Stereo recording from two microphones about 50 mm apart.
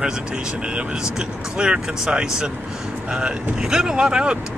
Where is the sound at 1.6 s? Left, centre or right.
Centre.